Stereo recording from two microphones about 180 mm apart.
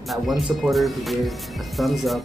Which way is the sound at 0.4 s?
Centre (ahead or behind).